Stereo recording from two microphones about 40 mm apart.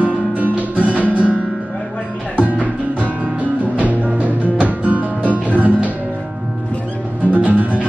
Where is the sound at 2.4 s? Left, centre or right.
Right.